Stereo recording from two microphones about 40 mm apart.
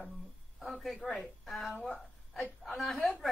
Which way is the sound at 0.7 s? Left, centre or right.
Centre.